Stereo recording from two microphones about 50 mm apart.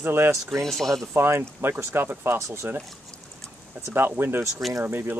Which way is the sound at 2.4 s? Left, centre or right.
Right.